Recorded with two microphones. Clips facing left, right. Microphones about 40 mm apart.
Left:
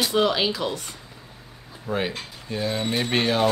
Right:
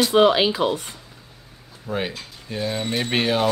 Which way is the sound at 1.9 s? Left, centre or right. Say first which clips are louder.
Even; centre.